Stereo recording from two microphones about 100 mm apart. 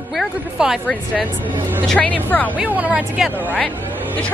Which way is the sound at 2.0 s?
15° left (ahead or behind).